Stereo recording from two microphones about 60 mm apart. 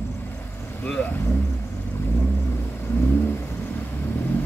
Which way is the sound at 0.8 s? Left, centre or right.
Left.